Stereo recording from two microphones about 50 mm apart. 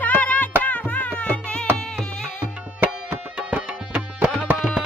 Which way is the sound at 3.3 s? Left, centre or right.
Right.